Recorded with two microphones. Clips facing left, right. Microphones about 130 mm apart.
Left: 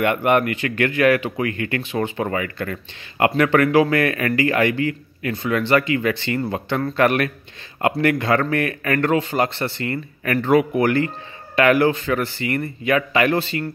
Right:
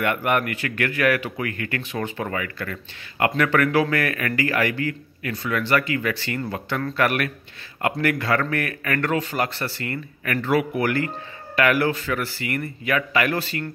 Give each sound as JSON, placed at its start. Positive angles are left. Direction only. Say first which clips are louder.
{"t": 0.0, "sound": "speech", "louder": "left 5 dB", "side_deg": 25}
{"t": 10.5, "sound": "speech", "louder": "left 5 dB", "side_deg": 25}